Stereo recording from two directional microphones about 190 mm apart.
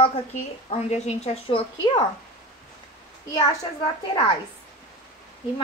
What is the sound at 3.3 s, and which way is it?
Speech, 25° left (ahead or behind).